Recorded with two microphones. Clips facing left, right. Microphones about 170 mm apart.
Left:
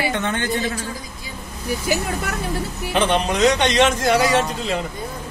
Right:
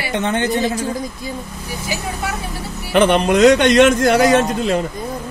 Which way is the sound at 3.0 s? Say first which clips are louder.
Right 6 dB; 55° right (ahead or behind).